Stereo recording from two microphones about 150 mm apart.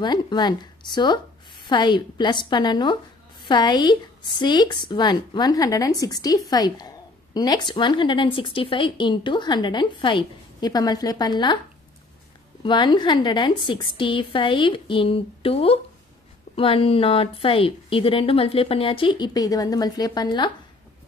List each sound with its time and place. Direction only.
0.0 s speech: 30° left (ahead or behind)
12.6 s speech: 30° left (ahead or behind)